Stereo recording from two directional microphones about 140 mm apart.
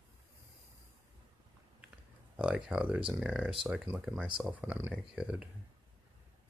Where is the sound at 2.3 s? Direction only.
5° right (ahead or behind).